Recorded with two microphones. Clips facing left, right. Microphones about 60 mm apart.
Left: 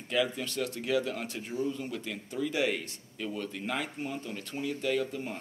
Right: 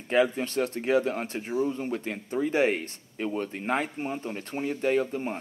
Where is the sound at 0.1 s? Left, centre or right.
Right.